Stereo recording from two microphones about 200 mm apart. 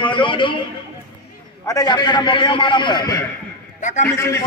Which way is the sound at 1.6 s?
20° left (ahead or behind).